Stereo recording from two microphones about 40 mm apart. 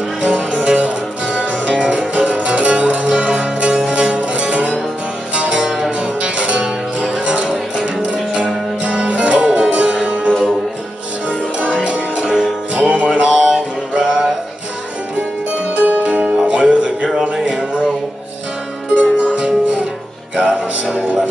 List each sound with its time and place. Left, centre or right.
0.2 s music: right
11.2 s music: right
15.8 s music: right
16.3 s music: right
18.9 s music: right